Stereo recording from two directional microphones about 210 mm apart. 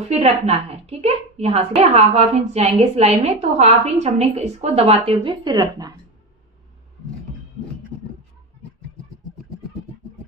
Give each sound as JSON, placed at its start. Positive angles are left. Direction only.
{"t": 0.0, "sound": "a woman's voice", "side_deg": -30}